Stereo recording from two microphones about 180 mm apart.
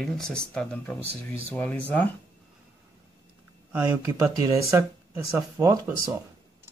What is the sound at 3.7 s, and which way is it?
Speech, 10° right (ahead or behind).